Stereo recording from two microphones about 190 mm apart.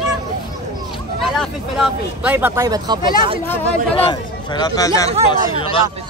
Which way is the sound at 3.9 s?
25° left (ahead or behind).